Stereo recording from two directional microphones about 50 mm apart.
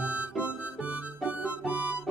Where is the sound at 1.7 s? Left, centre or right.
Right.